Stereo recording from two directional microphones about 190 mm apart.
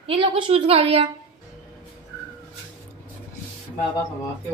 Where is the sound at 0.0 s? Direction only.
30° right (ahead or behind).